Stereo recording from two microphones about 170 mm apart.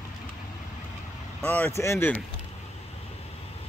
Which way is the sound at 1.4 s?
10° left (ahead or behind).